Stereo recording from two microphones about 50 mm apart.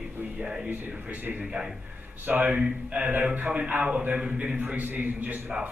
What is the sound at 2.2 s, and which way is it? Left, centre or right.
Speech, right.